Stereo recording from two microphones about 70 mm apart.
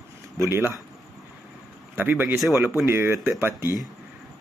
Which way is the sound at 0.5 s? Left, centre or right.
Right.